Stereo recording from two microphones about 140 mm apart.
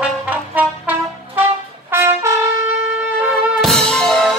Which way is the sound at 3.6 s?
5° left (ahead or behind).